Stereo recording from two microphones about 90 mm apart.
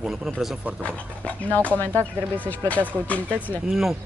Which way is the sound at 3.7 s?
5° right (ahead or behind).